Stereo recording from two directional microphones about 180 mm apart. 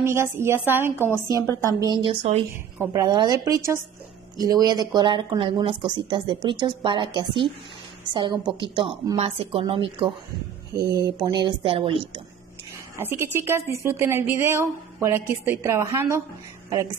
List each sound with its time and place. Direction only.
0.0 s a woman's voice: 15° right (ahead or behind); by 2.4 s 30° right (ahead or behind)
2.8 s speech: 20° right (ahead or behind)
10.7 s speech: 65° right (ahead or behind)
11.2 s speech: 25° right (ahead or behind)
12.9 s a woman's voice: 15° right (ahead or behind)